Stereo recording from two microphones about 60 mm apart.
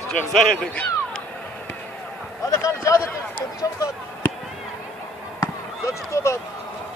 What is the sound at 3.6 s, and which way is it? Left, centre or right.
Speech, left.